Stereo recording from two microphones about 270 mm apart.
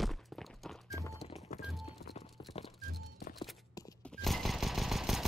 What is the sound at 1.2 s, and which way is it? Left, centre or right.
Music, left.